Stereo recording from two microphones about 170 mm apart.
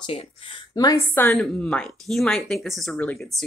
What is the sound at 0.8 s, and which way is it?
Speech, 20° left (ahead or behind).